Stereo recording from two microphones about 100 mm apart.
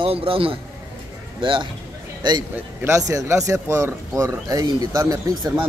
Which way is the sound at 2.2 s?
45° right (ahead or behind).